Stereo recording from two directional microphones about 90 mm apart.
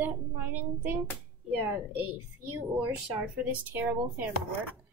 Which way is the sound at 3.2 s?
20° right (ahead or behind).